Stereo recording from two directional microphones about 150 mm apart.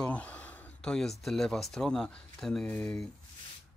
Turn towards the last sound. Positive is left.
turn(degrees=5)  # may be behind; listen again after turning